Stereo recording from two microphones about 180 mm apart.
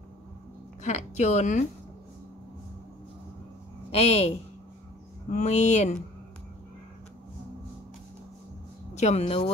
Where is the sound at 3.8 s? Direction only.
35° left (ahead or behind).